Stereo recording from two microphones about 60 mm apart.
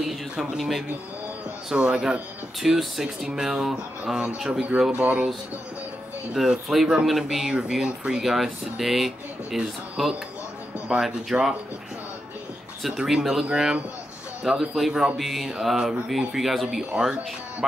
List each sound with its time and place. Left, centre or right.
0.0 s speech: centre
6.3 s speech: centre
12.8 s speech: centre
16.9 s speech: centre